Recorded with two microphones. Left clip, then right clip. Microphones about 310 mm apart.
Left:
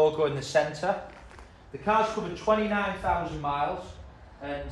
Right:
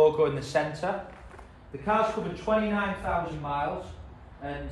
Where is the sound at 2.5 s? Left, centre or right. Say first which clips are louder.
Left 2 dB; left.